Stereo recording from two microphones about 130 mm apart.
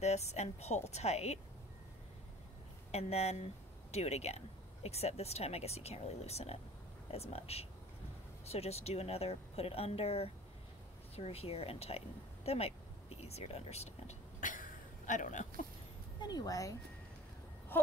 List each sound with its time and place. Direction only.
0.0 s a woman's voice: 60° left (ahead or behind)
2.9 s a woman's voice: 55° left (ahead or behind)
14.4 s a sound: 90° left; by 15.4 s 75° left (ahead or behind)
16.2 s speech: 30° left (ahead or behind)